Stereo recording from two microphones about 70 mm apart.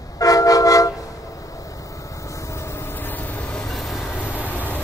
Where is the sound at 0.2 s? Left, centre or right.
Left.